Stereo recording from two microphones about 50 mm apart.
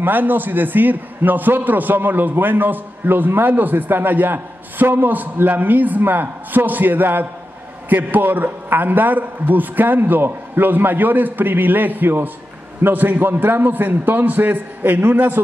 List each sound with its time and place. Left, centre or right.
0.0 s a man's voice: right